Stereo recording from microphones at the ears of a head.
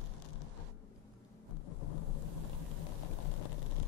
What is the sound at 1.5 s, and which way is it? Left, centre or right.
Vehicle, left.